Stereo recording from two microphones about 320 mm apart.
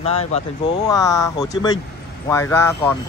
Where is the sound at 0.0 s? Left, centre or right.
Centre.